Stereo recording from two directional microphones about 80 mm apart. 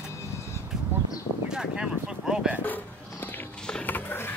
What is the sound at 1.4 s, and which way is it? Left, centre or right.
Speech, centre.